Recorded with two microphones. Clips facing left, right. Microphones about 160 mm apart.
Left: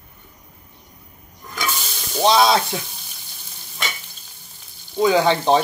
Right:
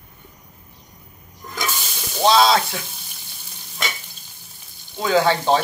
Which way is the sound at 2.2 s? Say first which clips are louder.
Even; 20° left (ahead or behind).